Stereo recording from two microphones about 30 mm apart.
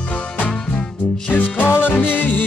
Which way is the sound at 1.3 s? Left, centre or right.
Left.